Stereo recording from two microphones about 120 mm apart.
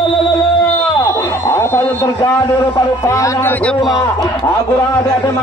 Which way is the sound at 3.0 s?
25° left (ahead or behind).